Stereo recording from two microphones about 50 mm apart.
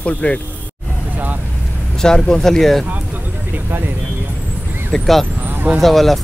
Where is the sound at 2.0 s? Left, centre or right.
Centre.